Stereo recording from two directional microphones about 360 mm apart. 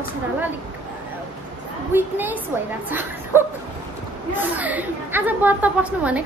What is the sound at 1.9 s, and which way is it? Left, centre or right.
A woman's voice, centre.